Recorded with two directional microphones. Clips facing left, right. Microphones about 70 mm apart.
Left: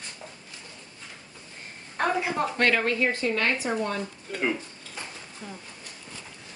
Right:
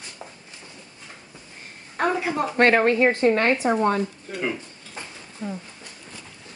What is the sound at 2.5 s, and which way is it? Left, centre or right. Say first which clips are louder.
Speech: right 9 dB; right.